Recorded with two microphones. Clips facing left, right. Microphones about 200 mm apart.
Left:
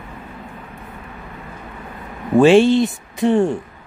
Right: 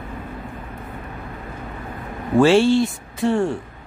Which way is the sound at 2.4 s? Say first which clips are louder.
Left 3 dB; 20° left (ahead or behind).